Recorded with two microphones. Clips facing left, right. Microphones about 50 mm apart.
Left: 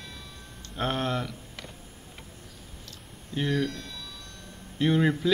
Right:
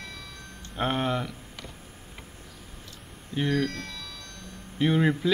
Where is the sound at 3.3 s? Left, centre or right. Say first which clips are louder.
Right 1 dB; centre.